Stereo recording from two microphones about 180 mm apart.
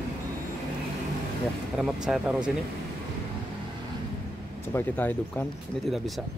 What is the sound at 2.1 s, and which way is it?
Speech, 5° right (ahead or behind).